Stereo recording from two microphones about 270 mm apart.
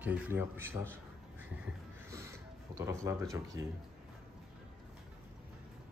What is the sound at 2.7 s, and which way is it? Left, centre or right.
Speech, centre.